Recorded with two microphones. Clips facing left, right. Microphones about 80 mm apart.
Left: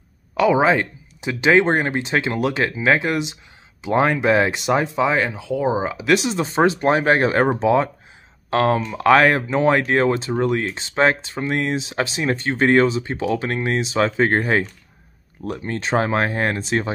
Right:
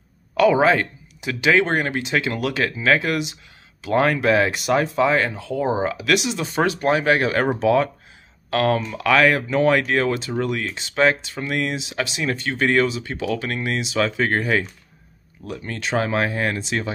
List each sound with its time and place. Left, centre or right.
0.4 s speech: centre; by 16.9 s left